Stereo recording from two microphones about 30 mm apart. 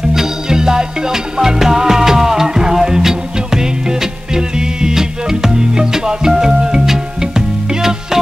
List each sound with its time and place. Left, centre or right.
0.1 s music: centre